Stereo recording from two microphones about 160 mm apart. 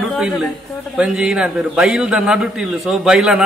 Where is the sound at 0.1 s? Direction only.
Centre (ahead or behind).